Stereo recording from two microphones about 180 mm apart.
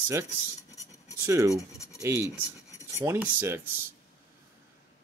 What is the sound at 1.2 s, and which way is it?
Cutlery, 15° right (ahead or behind).